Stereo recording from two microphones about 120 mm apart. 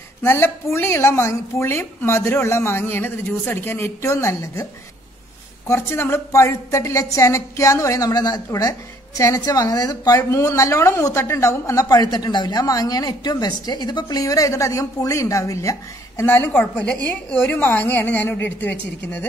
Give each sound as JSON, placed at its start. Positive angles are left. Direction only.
{"t": 0.2, "sound": "a woman's voice", "side_deg": 20}
{"t": 5.7, "sound": "a woman's voice", "side_deg": 20}